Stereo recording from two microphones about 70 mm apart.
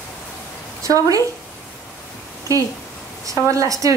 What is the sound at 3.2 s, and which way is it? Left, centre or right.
Speech, right.